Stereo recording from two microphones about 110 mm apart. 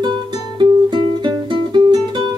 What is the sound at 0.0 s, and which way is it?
Music, 40° right (ahead or behind).